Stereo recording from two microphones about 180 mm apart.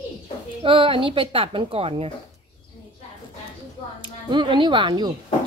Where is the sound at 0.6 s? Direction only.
30° right (ahead or behind).